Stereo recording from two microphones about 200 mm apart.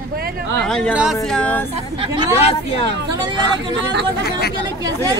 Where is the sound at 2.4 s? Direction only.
30° left (ahead or behind).